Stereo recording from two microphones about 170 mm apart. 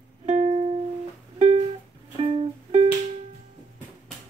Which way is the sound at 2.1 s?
35° right (ahead or behind).